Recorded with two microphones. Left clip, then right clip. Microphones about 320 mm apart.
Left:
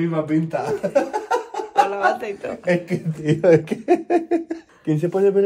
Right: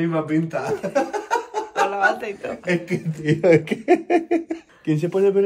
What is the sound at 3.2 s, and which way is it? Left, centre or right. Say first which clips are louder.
Speech: left 1 dB; right.